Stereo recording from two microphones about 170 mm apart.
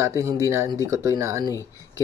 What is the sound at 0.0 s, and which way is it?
Speech, 20° right (ahead or behind).